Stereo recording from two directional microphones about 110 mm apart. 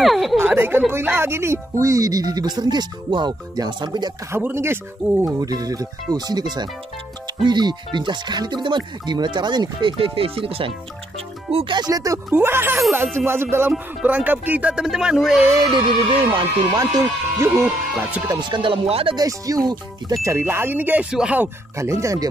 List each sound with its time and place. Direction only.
0.0 s a sound: centre (ahead or behind)
0.4 s a woman's voice: 20° right (ahead or behind); by 4.1 s 40° right (ahead or behind)
4.3 s speech: 20° right (ahead or behind)
5.4 s a woman's voice: 35° right (ahead or behind)
12.3 s speech: 20° right (ahead or behind)
15.7 s speech: 45° right (ahead or behind)
17.6 s speech: 10° right (ahead or behind)
18.4 s speech: 45° right (ahead or behind)
19.1 s a woman's voice: 35° right (ahead or behind)
20.2 s speech: 20° right (ahead or behind)
21.7 s speech: 25° right (ahead or behind)